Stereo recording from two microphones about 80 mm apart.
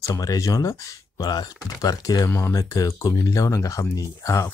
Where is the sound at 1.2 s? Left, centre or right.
Left.